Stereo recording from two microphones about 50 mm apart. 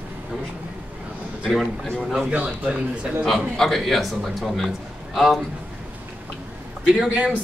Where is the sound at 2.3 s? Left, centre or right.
Right.